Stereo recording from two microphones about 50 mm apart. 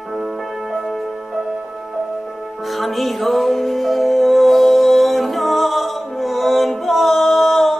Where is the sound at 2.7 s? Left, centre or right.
Centre.